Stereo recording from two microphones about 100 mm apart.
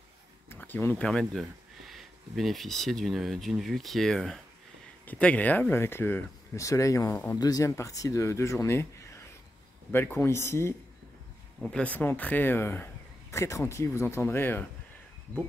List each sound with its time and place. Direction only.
0.5 s a sound: 20° left (ahead or behind)
1.0 s speech: 5° left (ahead or behind)
5.0 s speech: 15° left (ahead or behind)
6.6 s speech: 35° left (ahead or behind)
9.8 s speech: 15° left (ahead or behind)
10.1 s speech: 25° left (ahead or behind)
11.6 s speech: 10° left (ahead or behind)